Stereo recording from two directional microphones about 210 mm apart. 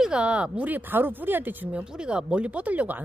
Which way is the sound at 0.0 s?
5° right (ahead or behind).